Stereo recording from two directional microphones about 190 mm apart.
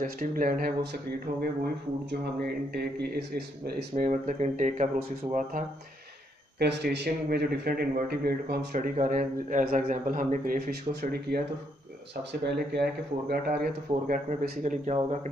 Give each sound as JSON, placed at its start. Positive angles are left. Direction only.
{"t": 0.0, "sound": "speech", "side_deg": -50}
{"t": 2.0, "sound": "speech", "side_deg": -60}
{"t": 6.6, "sound": "speech", "side_deg": -60}